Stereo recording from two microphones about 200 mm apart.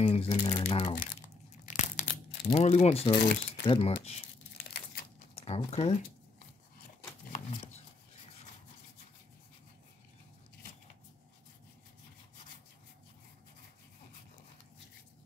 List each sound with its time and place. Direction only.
0.0 s speech: 30° left (ahead or behind)
0.9 s crumpling: 40° left (ahead or behind)
2.5 s speech: 30° left (ahead or behind)
5.3 s speech: 30° left (ahead or behind)
7.3 s a sound: 30° left (ahead or behind)